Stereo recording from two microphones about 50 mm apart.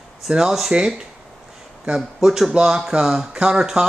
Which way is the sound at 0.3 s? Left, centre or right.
Centre.